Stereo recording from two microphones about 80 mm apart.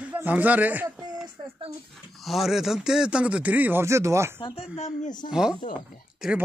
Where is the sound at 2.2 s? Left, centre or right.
Centre; by 3.8 s right.